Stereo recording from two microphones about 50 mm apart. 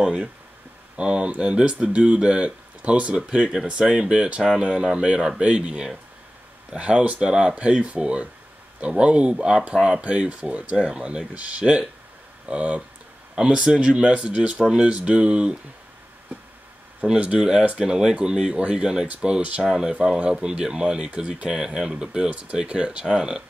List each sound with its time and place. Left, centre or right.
0.0 s speech: centre
13.4 s speech: centre
17.0 s speech: right